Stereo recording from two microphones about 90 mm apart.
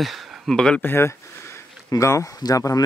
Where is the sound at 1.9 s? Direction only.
35° left (ahead or behind).